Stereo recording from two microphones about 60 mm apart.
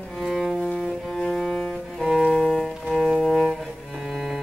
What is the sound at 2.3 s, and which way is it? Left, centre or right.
Music, centre.